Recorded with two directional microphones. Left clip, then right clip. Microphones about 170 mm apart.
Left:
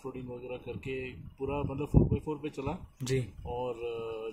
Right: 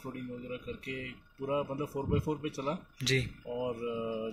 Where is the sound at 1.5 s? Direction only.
35° left (ahead or behind).